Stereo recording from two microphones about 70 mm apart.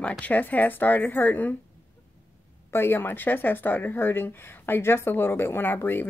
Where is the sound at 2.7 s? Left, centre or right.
Left.